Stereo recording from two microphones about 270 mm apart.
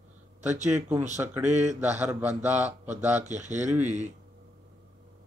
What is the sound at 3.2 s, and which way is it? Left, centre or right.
Speech, right.